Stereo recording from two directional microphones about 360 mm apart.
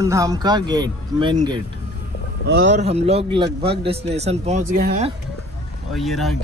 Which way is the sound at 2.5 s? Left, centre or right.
Right.